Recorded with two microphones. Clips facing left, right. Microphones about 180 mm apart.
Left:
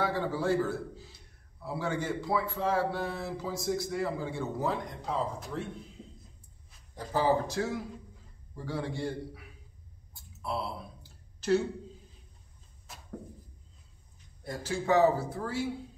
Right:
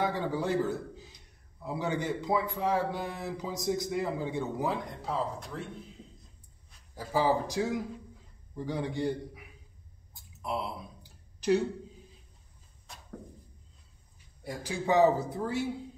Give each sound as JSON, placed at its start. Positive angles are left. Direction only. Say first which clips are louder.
{"t": 0.0, "sound": "a man's voice", "louder": "even", "side_deg": -15}
{"t": 5.0, "sound": "speech", "louder": "left 1 dB", "side_deg": 0}
{"t": 7.0, "sound": "a man's voice", "louder": "even", "side_deg": -10}
{"t": 10.1, "sound": "a sound", "louder": "right 1 dB", "side_deg": -15}
{"t": 12.9, "sound": "a sound", "louder": "even", "side_deg": 5}
{"t": 14.4, "sound": "a man's voice", "louder": "left 1 dB", "side_deg": -15}